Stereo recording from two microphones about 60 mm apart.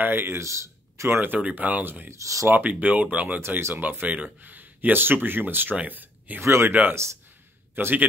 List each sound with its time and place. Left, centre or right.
0.0 s speech: right
0.4 s speech: right
1.2 s speech: right
2.0 s speech: right
2.4 s speech: right
3.3 s speech: right
4.1 s speech: right
6.4 s speech: right
6.7 s a man's voice: right